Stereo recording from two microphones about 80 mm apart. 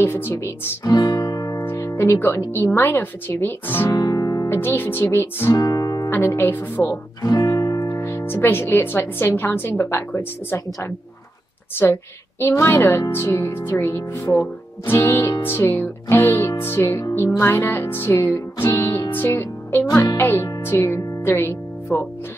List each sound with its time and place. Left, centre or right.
0.0 s a woman's voice: left
0.8 s music: left
1.6 s music: left
2.0 s a woman's voice: left
3.9 s music: left
4.5 s a woman's voice: left
5.6 s music: left
6.0 s a woman's voice: left
7.2 s music: left
7.9 s music: left
8.3 s a woman's voice: left
18.1 s music: left
19.2 s speech: left
20.2 s music: left